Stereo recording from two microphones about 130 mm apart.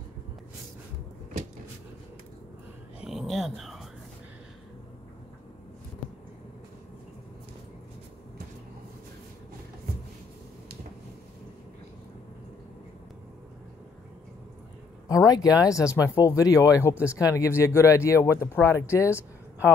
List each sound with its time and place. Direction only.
3.0 s dog: centre (ahead or behind)
15.0 s speech: 30° left (ahead or behind)